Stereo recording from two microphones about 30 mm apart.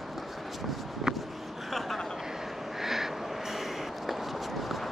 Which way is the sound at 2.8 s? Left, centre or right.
Centre.